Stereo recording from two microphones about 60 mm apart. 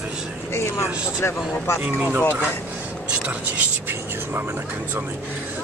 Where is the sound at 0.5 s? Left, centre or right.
Left.